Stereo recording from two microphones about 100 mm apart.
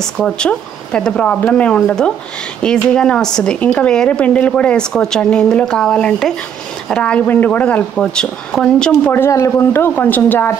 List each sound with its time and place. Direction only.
0.0 s a woman's voice: 10° left (ahead or behind)
9.1 s speech: 25° left (ahead or behind)